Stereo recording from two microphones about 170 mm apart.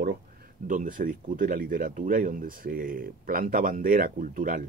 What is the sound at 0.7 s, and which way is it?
Speech, 50° right (ahead or behind).